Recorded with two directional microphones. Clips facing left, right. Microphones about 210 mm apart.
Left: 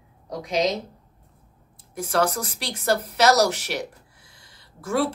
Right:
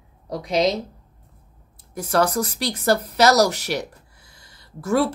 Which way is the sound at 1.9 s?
40° right (ahead or behind).